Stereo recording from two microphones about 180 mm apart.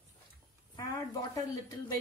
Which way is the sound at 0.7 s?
20° left (ahead or behind).